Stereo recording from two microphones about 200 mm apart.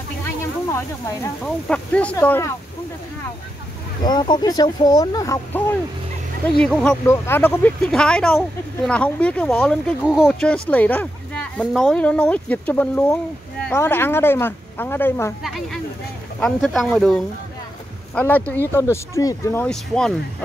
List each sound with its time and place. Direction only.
0.7 s speech: 15° left (ahead or behind)
4.0 s speech: 20° left (ahead or behind)
15.4 s speech: centre (ahead or behind)